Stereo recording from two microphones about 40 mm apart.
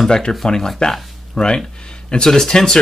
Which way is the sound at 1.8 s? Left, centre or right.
Left.